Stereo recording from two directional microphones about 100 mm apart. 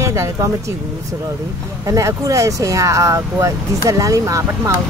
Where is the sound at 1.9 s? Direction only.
30° right (ahead or behind).